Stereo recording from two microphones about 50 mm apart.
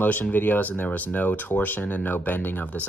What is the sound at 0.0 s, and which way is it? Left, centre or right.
Speech, left.